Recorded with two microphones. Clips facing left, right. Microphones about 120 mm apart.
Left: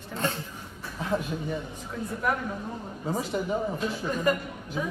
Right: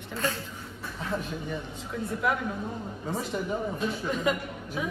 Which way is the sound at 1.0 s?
15° left (ahead or behind).